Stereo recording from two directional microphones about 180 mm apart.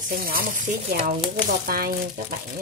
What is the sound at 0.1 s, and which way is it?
Speech, 50° right (ahead or behind).